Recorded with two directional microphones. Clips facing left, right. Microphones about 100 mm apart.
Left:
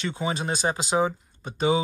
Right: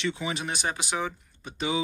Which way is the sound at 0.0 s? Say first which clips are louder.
Left 2 dB; 35° left (ahead or behind).